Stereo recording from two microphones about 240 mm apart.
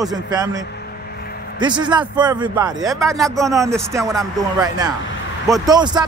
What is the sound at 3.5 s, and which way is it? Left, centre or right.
A man's voice, centre.